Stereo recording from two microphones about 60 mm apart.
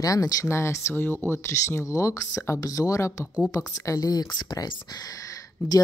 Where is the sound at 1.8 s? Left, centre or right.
Left.